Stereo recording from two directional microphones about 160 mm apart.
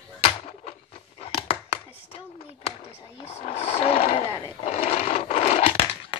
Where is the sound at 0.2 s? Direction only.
40° left (ahead or behind).